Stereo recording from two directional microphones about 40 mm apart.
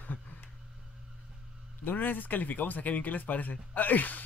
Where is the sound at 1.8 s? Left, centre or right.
Left.